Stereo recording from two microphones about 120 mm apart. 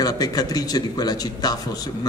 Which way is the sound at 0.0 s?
30° left (ahead or behind).